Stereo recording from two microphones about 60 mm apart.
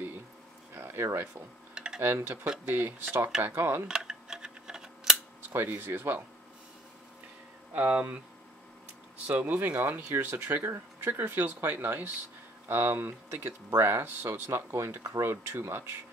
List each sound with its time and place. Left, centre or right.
0.7 s speech: right
3.8 s a sound: centre
5.7 s speech: right
7.7 s speech: right
9.3 s speech: right